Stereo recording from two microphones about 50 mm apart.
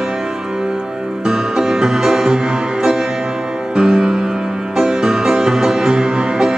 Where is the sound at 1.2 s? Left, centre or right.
Centre.